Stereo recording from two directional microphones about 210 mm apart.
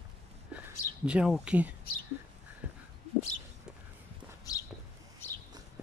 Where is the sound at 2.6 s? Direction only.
5° right (ahead or behind).